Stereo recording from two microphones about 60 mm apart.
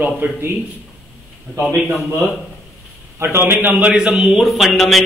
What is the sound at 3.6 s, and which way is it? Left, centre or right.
Speech, right.